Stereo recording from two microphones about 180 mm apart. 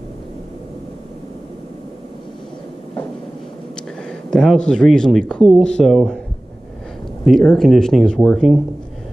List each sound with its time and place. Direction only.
4.3 s speech: 5° left (ahead or behind)
7.2 s speech: 5° left (ahead or behind)